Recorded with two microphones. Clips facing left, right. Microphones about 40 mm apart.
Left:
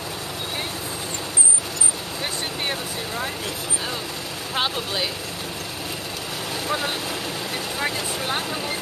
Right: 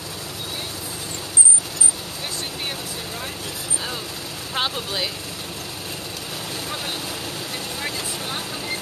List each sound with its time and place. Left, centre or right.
4.6 s speech: centre